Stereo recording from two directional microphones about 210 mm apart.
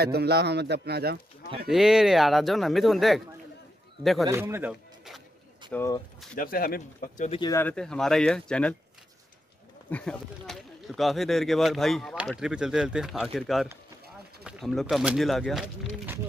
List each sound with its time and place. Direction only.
0.0 s a man's voice: 50° right (ahead or behind)
1.7 s speech: centre (ahead or behind)
4.3 s speech: 10° right (ahead or behind)
5.7 s speech: 15° left (ahead or behind)
6.3 s speech: 45° left (ahead or behind)
7.3 s speech: 20° left (ahead or behind)
7.6 s speech: 5° left (ahead or behind)
9.8 s speech: 5° left (ahead or behind)